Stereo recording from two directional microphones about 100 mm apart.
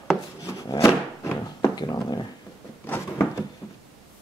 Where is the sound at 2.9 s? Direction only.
25° left (ahead or behind).